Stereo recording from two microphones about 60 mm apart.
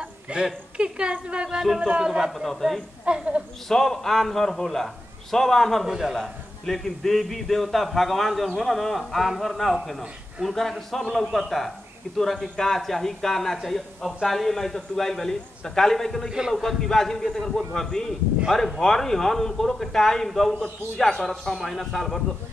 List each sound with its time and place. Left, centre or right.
0.0 s a sound: centre
0.7 s a woman's voice: centre
3.1 s a woman's voice: centre
3.6 s a man's voice: centre
5.9 s a woman's voice: centre
6.1 s a man's voice: centre
16.3 s a woman's voice: centre
16.6 s a man's voice: centre